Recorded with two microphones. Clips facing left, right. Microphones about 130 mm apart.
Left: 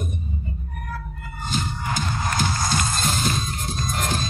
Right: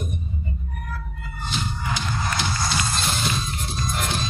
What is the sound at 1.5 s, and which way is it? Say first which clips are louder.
Music: left 2 dB; 45° left (ahead or behind).